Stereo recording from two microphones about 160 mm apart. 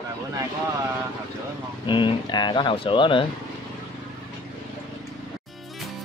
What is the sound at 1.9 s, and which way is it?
Speech, 30° left (ahead or behind).